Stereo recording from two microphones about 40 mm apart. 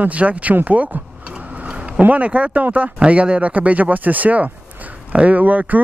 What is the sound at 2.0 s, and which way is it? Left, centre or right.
Speech, right.